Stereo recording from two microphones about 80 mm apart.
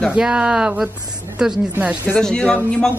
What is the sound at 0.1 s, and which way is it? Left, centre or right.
Speech, centre.